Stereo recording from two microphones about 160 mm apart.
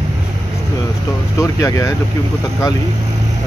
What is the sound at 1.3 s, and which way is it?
Speech, 20° left (ahead or behind).